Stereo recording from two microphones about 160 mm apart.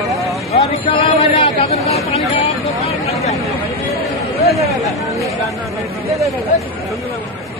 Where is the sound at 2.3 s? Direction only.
40° left (ahead or behind).